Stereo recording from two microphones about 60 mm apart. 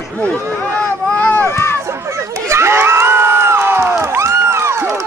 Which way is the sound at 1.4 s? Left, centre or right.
Left.